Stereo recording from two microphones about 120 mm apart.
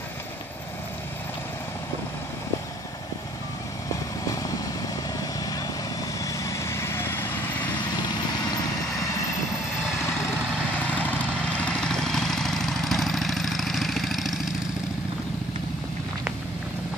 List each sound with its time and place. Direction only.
4.3 s vehicle: 30° left (ahead or behind)
6.1 s vehicle: 30° left (ahead or behind)
11.5 s vehicle: 10° left (ahead or behind)